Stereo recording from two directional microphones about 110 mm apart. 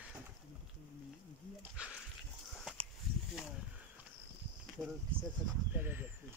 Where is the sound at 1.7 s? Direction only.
10° right (ahead or behind).